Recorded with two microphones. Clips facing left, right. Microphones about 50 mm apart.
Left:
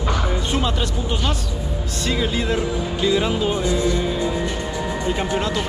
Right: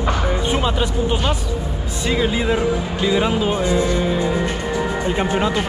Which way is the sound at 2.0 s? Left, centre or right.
Centre.